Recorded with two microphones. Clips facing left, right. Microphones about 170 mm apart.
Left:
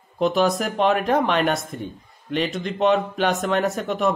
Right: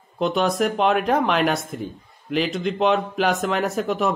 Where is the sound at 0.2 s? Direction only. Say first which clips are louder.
Left 1 dB; centre (ahead or behind).